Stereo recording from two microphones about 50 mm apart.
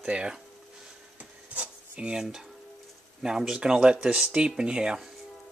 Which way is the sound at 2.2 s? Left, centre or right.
Centre.